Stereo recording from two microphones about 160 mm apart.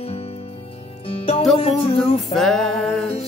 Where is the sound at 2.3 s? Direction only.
Centre (ahead or behind).